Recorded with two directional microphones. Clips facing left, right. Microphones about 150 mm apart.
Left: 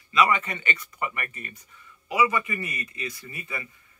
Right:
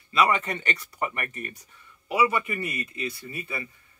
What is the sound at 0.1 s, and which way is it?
A man's voice, 35° right (ahead or behind).